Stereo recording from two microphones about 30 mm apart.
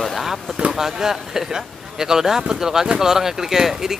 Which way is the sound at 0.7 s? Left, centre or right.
Centre.